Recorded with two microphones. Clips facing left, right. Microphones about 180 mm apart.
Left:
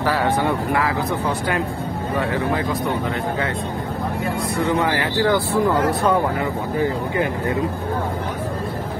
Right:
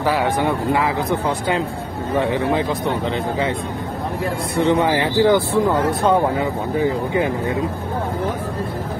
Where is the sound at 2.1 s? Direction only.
20° right (ahead or behind).